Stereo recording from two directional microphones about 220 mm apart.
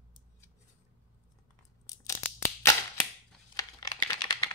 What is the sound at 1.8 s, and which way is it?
Tearing, 15° left (ahead or behind).